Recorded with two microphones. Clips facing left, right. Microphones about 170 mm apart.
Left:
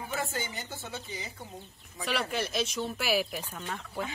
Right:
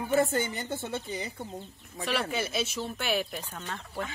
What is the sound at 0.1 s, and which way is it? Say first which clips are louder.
A woman's voice: right 10 dB; 50° right (ahead or behind).